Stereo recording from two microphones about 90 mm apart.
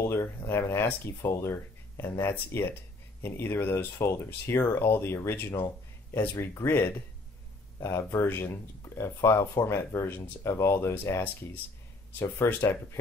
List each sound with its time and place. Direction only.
0.0 s speech: 25° left (ahead or behind)